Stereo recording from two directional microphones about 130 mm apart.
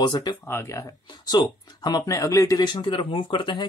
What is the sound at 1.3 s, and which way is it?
Speech, 30° left (ahead or behind).